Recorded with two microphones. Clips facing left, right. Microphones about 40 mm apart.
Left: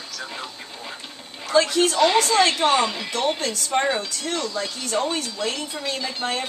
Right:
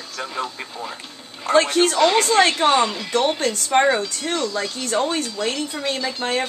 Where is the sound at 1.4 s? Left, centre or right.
Right.